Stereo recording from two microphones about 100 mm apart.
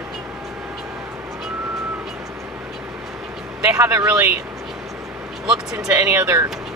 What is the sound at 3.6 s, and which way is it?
Speech, 25° right (ahead or behind).